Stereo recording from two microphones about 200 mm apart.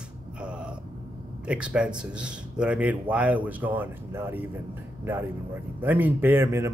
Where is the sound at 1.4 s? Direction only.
5° right (ahead or behind).